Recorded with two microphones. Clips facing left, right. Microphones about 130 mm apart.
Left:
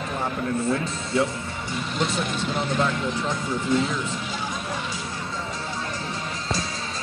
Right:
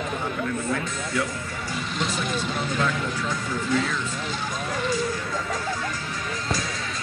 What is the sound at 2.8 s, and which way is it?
Speech, 25° left (ahead or behind).